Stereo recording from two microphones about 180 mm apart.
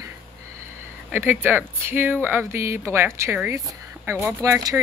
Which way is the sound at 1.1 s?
10° right (ahead or behind).